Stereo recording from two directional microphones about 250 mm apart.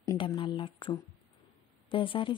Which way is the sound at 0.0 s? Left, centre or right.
Centre.